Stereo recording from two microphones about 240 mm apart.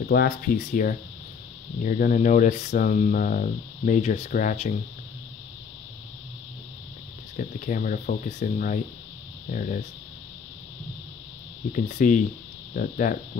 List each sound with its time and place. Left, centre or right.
0.0 s speech: left
7.3 s speech: left
11.7 s speech: left